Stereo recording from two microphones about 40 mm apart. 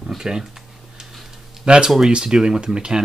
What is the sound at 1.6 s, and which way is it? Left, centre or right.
Speech, right.